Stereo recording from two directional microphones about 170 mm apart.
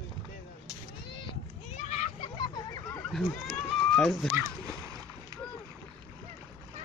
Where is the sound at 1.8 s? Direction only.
45° left (ahead or behind); by 3.0 s 25° left (ahead or behind).